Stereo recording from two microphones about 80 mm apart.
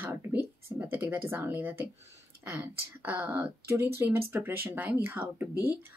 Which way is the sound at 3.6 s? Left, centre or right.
Right.